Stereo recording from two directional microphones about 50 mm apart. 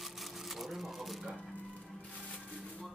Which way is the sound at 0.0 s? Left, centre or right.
Centre.